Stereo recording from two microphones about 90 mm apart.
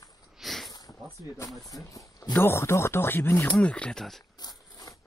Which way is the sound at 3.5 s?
10° left (ahead or behind).